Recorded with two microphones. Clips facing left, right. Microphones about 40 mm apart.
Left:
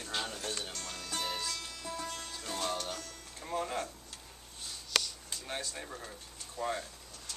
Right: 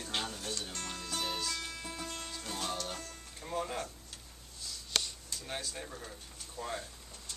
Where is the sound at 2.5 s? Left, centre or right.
Centre.